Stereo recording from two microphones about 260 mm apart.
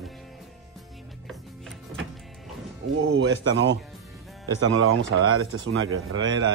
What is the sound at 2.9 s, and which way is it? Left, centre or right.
Speech, right.